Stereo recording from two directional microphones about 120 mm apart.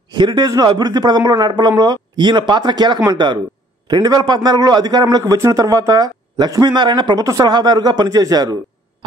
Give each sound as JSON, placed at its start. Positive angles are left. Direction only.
{"t": 0.1, "sound": "a man's voice", "side_deg": -40}